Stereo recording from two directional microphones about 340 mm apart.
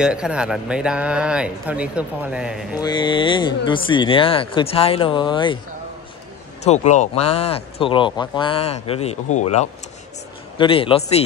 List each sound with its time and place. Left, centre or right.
0.0 s speech: centre
2.8 s speech: centre
6.6 s speech: centre